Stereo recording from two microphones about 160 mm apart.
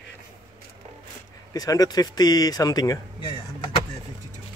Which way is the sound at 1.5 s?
20° left (ahead or behind).